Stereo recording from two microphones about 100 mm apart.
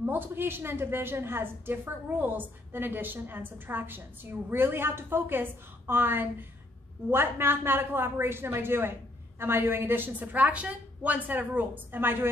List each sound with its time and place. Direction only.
0.0 s a woman's voice: 20° right (ahead or behind)